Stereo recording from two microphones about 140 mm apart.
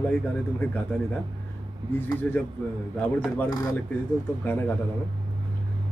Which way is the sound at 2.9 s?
10° left (ahead or behind).